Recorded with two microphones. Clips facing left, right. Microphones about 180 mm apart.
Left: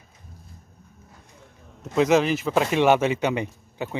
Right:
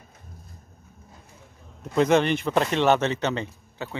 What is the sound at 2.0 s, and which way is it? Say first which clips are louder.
Speech: left 1 dB; centre (ahead or behind).